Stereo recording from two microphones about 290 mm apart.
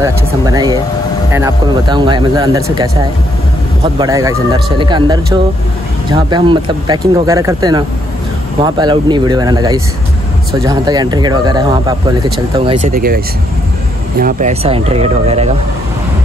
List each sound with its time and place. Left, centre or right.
0.0 s speech: centre
12.9 s speech: right
14.2 s speech: right